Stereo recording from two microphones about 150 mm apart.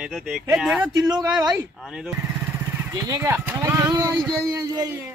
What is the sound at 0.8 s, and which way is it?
Speech, 25° right (ahead or behind).